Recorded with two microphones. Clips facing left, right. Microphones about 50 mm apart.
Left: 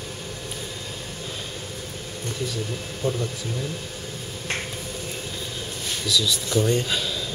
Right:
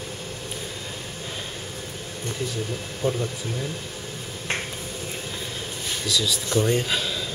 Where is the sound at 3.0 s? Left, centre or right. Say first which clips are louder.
Right 1 dB; right.